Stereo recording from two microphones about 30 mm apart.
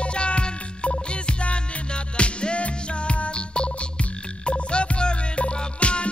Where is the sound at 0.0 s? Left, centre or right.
Left.